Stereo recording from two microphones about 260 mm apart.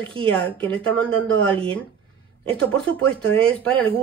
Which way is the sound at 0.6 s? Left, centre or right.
Centre.